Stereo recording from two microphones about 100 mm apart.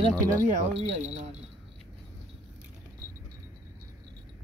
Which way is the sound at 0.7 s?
90° right.